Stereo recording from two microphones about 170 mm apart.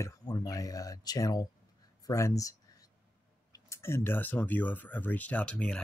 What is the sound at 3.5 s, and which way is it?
Speech, 15° left (ahead or behind).